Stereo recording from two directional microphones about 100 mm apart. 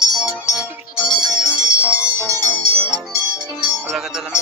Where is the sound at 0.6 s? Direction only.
10° right (ahead or behind).